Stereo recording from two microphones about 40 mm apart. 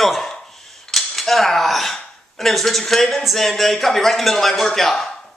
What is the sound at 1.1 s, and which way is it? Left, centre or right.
Speech, centre.